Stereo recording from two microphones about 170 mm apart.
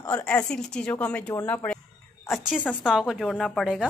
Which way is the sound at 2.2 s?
Centre (ahead or behind).